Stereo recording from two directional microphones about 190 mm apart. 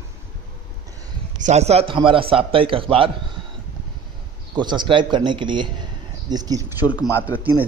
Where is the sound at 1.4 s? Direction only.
35° right (ahead or behind).